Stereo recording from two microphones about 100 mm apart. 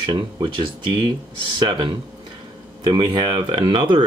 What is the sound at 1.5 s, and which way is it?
Speech, 50° right (ahead or behind).